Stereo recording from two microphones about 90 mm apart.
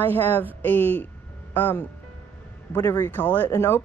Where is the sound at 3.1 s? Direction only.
20° left (ahead or behind).